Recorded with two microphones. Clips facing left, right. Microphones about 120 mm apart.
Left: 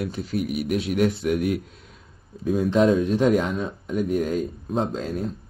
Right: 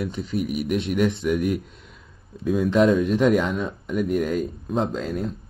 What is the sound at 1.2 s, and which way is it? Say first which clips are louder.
Speech: even; 50° left (ahead or behind).